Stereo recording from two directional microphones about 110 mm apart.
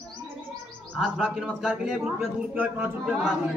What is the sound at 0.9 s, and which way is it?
A man's voice, centre (ahead or behind).